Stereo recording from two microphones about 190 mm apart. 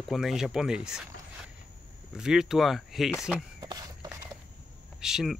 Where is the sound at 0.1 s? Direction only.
Centre (ahead or behind).